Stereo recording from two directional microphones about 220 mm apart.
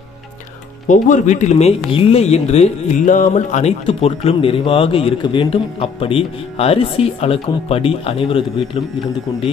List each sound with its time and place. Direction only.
0.8 s speech: 35° left (ahead or behind)